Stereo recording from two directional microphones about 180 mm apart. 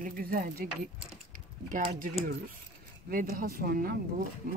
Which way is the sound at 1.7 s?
50° right (ahead or behind).